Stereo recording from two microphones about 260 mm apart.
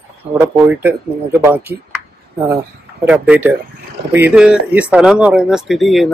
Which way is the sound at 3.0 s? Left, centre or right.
Centre.